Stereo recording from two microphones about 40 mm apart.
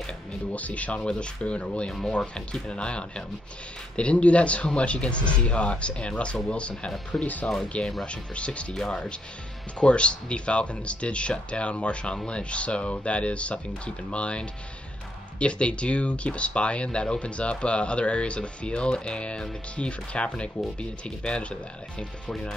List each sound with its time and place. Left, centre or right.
0.5 s speech: left
1.0 s speech: left
1.9 s speech: centre
2.1 s a man's voice: left
8.7 s a man's voice: centre